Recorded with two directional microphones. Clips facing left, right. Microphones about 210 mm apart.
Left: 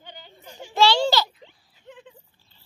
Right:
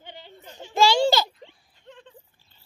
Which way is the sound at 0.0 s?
25° right (ahead or behind).